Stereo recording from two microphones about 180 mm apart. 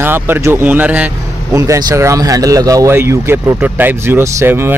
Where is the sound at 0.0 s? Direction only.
10° right (ahead or behind).